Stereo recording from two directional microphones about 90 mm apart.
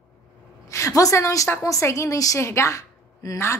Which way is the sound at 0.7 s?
35° left (ahead or behind).